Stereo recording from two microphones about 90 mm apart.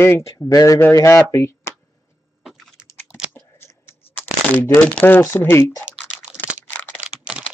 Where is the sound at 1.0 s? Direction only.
30° left (ahead or behind).